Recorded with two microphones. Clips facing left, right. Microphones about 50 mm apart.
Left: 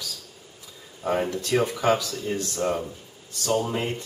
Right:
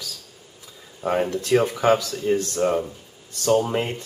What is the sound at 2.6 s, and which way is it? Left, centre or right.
Speech, centre.